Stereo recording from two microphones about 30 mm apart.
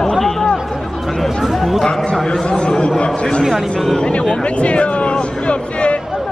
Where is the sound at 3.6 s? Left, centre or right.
Centre.